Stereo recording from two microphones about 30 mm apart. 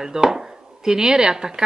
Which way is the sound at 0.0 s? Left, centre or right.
Right.